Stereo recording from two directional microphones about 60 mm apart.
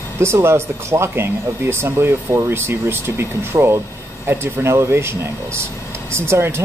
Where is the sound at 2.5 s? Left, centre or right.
Right.